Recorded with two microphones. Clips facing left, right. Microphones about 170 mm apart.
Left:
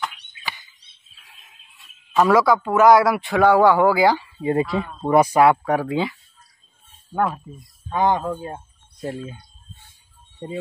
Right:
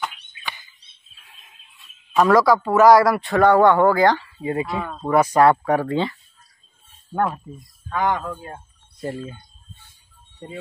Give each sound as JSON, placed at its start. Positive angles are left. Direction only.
{"t": 2.1, "sound": "a man's voice", "side_deg": 0}
{"t": 4.4, "sound": "speech", "side_deg": 30}
{"t": 5.0, "sound": "speech", "side_deg": 20}
{"t": 5.3, "sound": "a man's voice", "side_deg": 5}
{"t": 7.2, "sound": "a man's voice", "side_deg": 5}
{"t": 7.9, "sound": "speech", "side_deg": 25}
{"t": 9.0, "sound": "a man's voice", "side_deg": 0}
{"t": 10.4, "sound": "speech", "side_deg": 25}